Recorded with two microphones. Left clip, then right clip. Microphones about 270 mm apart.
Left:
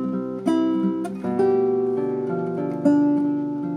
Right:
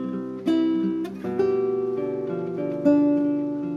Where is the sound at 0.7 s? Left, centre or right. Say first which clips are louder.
Left 1 dB; centre.